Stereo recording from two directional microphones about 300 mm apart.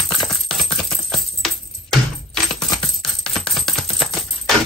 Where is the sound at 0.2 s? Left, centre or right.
Centre.